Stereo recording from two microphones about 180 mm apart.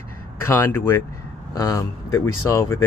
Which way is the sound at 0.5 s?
15° left (ahead or behind).